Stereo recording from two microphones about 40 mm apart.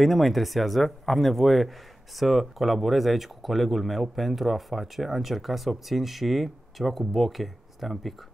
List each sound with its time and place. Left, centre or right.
0.0 s speech: centre